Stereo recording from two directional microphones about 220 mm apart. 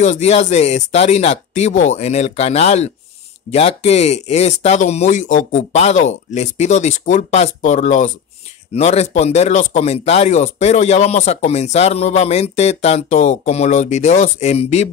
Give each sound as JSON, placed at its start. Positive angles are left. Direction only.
{"t": 0.0, "sound": "speech", "side_deg": 30}